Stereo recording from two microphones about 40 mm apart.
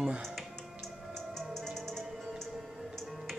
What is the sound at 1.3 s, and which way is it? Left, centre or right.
Music, centre.